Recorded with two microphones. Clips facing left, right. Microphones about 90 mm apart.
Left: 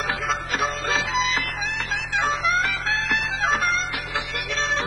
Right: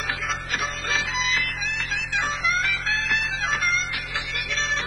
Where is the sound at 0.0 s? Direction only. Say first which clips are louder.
Left 4 dB; 40° left (ahead or behind).